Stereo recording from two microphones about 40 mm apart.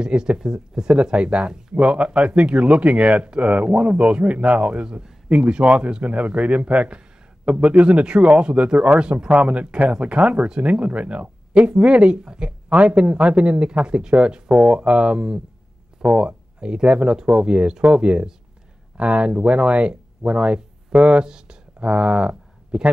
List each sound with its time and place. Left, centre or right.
0.0 s speech: right
12.4 s speech: right
12.8 s speech: right